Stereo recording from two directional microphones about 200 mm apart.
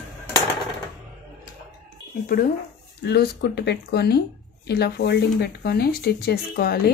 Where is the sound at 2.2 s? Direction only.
45° left (ahead or behind).